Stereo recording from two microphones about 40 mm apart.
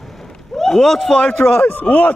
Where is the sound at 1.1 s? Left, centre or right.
Left.